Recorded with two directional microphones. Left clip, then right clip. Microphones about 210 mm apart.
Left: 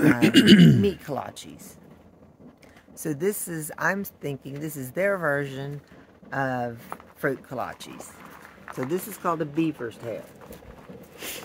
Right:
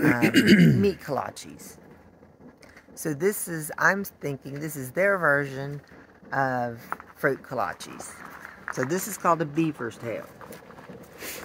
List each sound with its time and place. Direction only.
0.0 s speech: 25° left (ahead or behind)
0.7 s a woman's voice: centre (ahead or behind)
3.0 s a woman's voice: centre (ahead or behind)
8.7 s speech: 40° right (ahead or behind)
11.1 s a sound: 5° left (ahead or behind)